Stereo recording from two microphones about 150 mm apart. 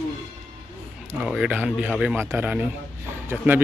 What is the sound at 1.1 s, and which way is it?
Speech, 5° right (ahead or behind).